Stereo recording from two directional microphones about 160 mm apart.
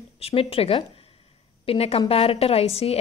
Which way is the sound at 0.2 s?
35° left (ahead or behind).